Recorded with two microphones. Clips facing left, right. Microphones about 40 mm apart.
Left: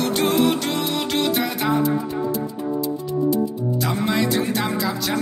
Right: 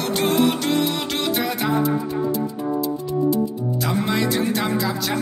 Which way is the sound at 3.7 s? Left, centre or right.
Centre.